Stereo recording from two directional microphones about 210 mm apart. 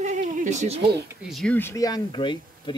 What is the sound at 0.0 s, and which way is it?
Cat, 35° right (ahead or behind).